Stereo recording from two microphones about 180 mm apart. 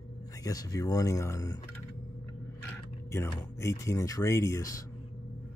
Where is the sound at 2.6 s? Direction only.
10° left (ahead or behind).